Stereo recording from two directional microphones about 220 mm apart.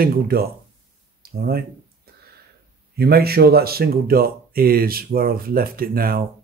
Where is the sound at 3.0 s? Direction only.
45° right (ahead or behind).